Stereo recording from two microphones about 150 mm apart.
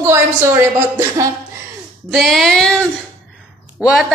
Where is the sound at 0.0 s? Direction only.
15° right (ahead or behind).